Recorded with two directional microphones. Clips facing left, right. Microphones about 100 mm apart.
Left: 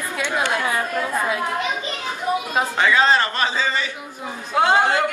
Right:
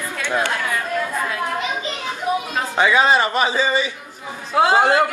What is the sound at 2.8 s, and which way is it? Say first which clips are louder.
A man's voice: right 2 dB; 15° right (ahead or behind).